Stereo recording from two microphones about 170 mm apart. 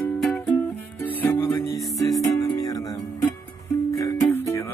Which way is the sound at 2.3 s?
20° left (ahead or behind).